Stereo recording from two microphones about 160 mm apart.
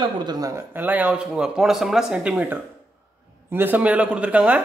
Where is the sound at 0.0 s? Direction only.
25° right (ahead or behind).